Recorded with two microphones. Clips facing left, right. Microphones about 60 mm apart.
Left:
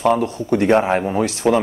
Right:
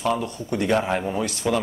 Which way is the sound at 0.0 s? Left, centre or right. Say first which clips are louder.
Left 7 dB; left.